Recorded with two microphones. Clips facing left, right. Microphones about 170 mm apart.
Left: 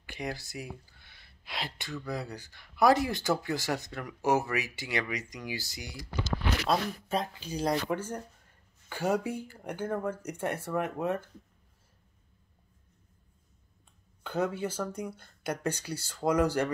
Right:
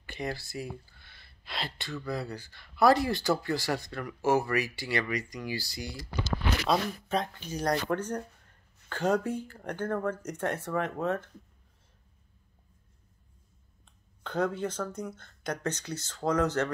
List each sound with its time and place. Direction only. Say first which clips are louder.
0.0 s a sound: right 2 dB; 15° left (ahead or behind)
2.0 s speech: right 3 dB; 15° left (ahead or behind)
6.7 s speech: right 1 dB; 5° left (ahead or behind)
14.2 s speech: right 1 dB; 5° left (ahead or behind)